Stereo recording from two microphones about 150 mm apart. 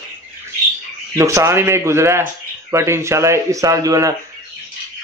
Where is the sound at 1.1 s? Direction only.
20° right (ahead or behind).